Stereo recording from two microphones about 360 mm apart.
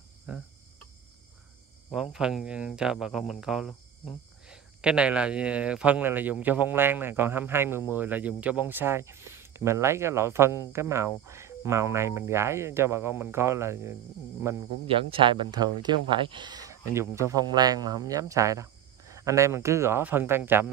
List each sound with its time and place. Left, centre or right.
2.1 s speech: centre